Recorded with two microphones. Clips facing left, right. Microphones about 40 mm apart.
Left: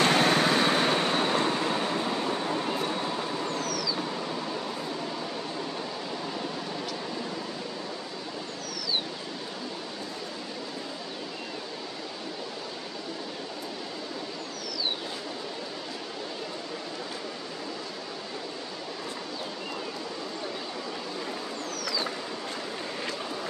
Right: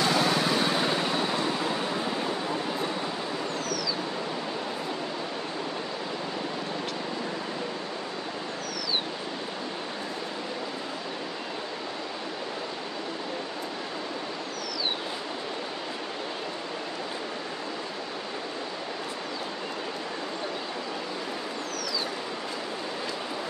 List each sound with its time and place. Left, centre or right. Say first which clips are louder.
0.0 s vehicle: left 2 dB; left